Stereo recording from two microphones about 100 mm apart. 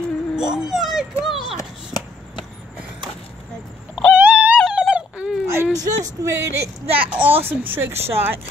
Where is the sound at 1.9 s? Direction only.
40° left (ahead or behind).